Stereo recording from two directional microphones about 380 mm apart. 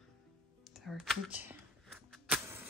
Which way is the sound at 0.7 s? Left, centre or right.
Centre.